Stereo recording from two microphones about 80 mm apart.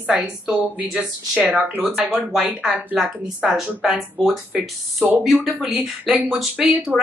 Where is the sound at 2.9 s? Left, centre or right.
Centre.